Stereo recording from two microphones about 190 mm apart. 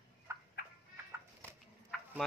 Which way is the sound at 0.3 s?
15° right (ahead or behind).